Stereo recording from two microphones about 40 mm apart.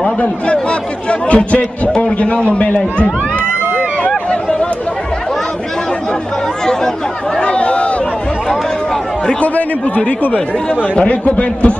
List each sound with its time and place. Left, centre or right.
0.2 s speech: left
4.3 s a sound: left
6.6 s speech: centre
7.3 s speech: left
9.4 s speech: left